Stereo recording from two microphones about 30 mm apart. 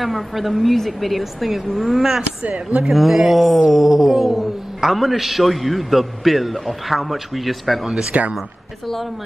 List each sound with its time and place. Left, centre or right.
0.0 s a man's voice: centre
8.1 s speech: right